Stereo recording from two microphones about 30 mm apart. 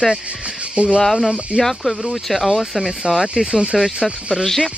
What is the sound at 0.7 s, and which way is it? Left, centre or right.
Speech, right.